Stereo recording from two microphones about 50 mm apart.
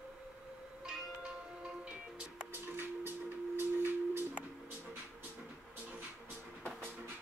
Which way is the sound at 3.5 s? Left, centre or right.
Right.